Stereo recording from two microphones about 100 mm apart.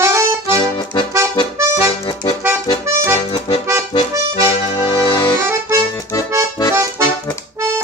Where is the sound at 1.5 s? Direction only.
30° right (ahead or behind).